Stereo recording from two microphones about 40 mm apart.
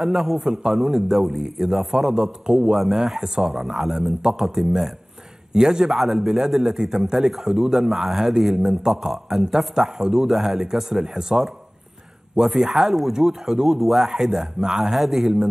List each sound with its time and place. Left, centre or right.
0.0 s a man's voice: centre
0.5 s a man's voice: centre
5.9 s a man's voice: centre
7.9 s a man's voice: centre
12.4 s a man's voice: centre